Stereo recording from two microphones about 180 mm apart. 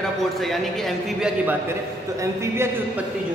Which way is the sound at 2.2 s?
15° right (ahead or behind).